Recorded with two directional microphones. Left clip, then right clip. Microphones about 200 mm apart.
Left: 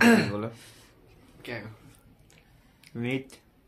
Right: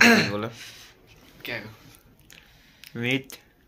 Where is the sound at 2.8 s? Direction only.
5° right (ahead or behind).